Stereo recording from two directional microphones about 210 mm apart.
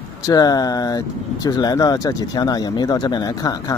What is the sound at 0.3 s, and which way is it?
Speech, 15° left (ahead or behind).